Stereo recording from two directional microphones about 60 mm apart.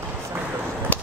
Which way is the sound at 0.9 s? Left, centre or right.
Left.